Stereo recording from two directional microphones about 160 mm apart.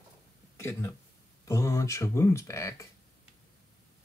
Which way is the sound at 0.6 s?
15° left (ahead or behind).